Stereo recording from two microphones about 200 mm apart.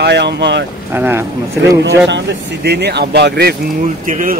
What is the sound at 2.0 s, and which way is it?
Speech, 60° right (ahead or behind).